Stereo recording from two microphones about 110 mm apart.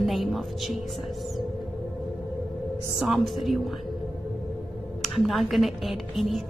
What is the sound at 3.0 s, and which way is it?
Speech, centre (ahead or behind).